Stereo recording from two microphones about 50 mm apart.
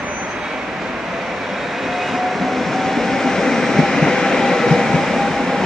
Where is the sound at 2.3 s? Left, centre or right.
Centre.